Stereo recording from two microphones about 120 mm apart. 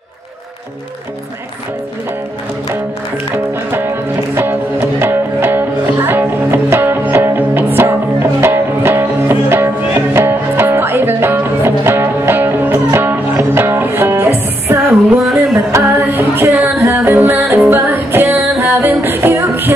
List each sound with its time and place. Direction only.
3.7 s music: 20° right (ahead or behind)
15.1 s music: centre (ahead or behind)
15.7 s music: 20° right (ahead or behind)
16.5 s singing: 5° right (ahead or behind)
16.8 s music: 20° right (ahead or behind)